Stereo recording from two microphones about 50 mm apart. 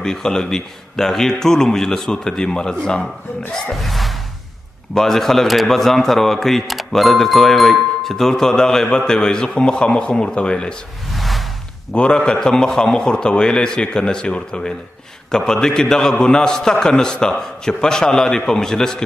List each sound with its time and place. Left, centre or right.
0.0 s speech: centre
3.7 s a sound: centre
4.9 s speech: centre
11.1 s music: centre
11.9 s speech: centre